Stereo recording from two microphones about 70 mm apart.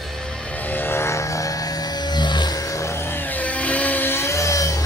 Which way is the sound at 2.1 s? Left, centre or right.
Left.